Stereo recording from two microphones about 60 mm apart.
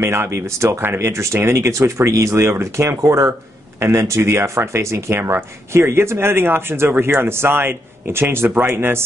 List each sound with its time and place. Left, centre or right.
0.0 s a man's voice: right